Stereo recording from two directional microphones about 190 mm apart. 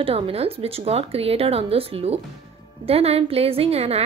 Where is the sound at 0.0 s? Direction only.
30° right (ahead or behind).